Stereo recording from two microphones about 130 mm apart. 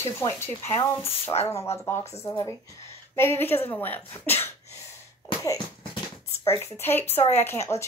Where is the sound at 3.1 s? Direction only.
20° left (ahead or behind).